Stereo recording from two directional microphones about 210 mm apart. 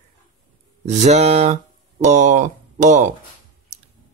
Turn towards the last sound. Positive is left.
turn(degrees=-35)  # may be behind; listen again after turning